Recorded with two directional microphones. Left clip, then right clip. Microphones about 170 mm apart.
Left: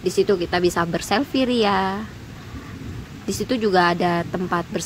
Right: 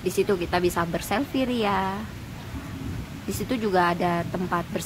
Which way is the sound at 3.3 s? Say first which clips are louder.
Left 6 dB; 15° left (ahead or behind).